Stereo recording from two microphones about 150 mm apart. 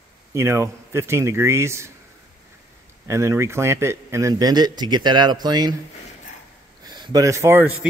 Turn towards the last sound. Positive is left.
turn(degrees=-15)  # may be behind; listen again after turning